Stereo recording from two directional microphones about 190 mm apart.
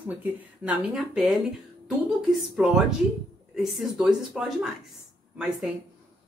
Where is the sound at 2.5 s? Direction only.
5° right (ahead or behind).